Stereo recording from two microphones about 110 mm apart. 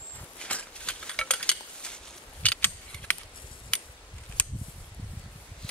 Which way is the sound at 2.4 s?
10° left (ahead or behind).